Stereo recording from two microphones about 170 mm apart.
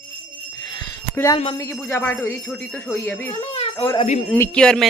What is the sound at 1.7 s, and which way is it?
Speech, 10° left (ahead or behind).